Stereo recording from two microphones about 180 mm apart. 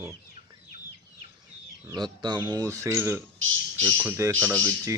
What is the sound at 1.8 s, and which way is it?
Speech, 25° right (ahead or behind).